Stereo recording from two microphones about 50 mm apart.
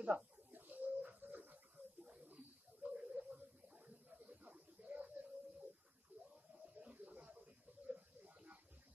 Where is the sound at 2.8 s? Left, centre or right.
Right.